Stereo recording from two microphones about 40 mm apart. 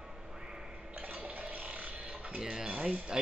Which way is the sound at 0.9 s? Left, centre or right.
Right.